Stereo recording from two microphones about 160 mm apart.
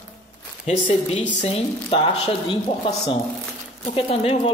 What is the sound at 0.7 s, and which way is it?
Speech, 45° left (ahead or behind).